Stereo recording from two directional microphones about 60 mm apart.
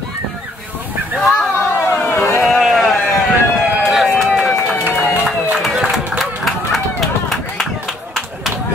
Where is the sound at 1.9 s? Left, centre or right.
Left.